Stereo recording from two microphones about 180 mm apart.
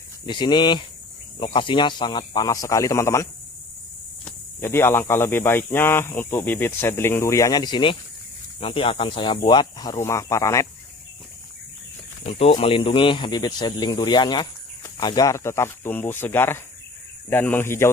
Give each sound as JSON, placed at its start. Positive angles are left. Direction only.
{"t": 0.3, "sound": "speech", "side_deg": 25}
{"t": 12.3, "sound": "speech", "side_deg": 30}